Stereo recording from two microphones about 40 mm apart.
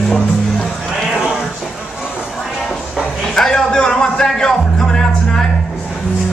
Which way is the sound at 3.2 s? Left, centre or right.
Centre.